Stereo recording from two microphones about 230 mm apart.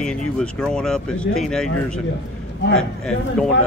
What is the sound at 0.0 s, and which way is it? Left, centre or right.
A man's voice, centre.